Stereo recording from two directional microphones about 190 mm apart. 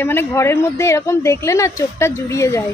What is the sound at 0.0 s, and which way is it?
A woman's voice, 10° left (ahead or behind).